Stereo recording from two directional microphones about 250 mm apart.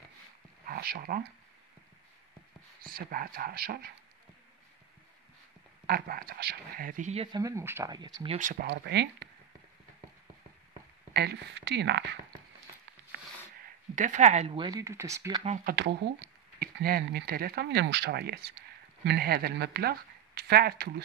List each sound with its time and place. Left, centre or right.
0.7 s speech: right
2.8 s speech: right
5.9 s speech: right
7.4 s speech: centre
8.4 s speech: right
11.1 s speech: right
13.9 s speech: right; by 15.4 s centre
15.4 s speech: right
15.7 s speech: right